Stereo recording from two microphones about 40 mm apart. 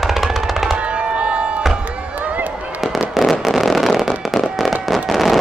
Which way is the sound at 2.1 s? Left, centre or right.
Right.